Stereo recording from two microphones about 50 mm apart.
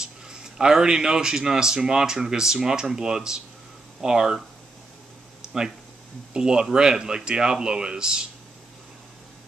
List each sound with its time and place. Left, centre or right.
0.0 s a man's voice: centre
5.4 s a sound: centre
6.3 s a man's voice: centre